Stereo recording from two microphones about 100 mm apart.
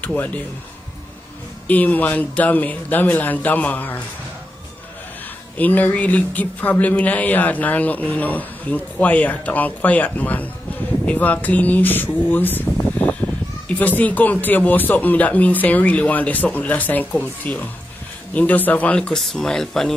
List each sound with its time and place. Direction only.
0.0 s speech: 15° left (ahead or behind)
1.7 s speech: 15° left (ahead or behind)
5.6 s speech: 15° left (ahead or behind)
13.0 s a sound: 15° left (ahead or behind)
13.7 s speech: 15° left (ahead or behind)